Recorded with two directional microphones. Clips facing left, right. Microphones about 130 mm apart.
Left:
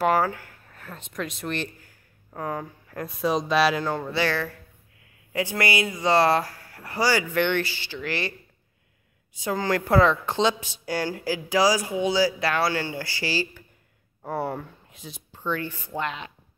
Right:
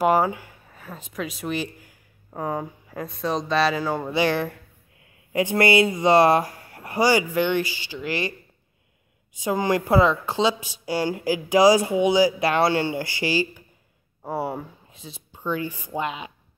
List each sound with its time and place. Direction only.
0.0 s speech: 15° right (ahead or behind)
3.0 s speech: 5° left (ahead or behind)
3.8 s speech: 10° right (ahead or behind)
14.9 s speech: centre (ahead or behind)
15.3 s speech: 10° right (ahead or behind)